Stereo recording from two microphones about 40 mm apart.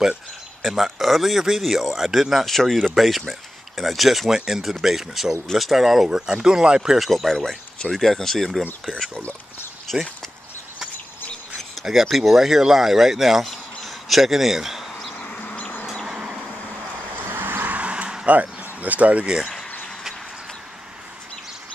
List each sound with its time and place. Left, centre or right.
0.6 s speech: centre
2.4 s speech: centre
6.0 s speech: centre
7.0 s speech: centre
9.9 s speech: centre
11.8 s speech: centre
15.1 s chicken: left
17.1 s vehicle: right
17.7 s a sound: right
18.2 s speech: right